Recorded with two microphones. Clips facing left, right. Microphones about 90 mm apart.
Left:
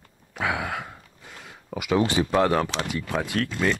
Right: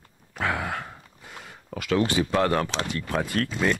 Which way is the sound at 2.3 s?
10° left (ahead or behind).